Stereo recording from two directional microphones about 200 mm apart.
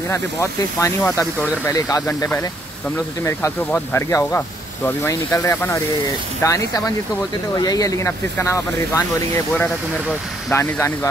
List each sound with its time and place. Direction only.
0.1 s speech: 15° left (ahead or behind)
10.5 s speech: 10° left (ahead or behind)